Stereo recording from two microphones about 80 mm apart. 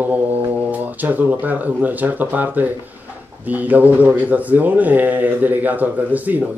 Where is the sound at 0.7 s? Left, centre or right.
Right.